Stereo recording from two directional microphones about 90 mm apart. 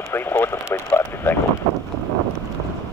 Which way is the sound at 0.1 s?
25° left (ahead or behind).